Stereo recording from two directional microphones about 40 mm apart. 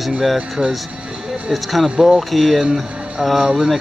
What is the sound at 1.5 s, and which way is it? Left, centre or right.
Speech, centre.